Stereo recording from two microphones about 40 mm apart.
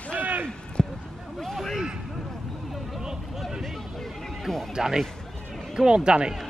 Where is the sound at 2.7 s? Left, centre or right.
Centre.